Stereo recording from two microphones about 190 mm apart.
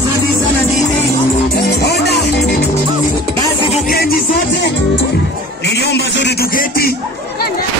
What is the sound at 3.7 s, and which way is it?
Music, 50° left (ahead or behind).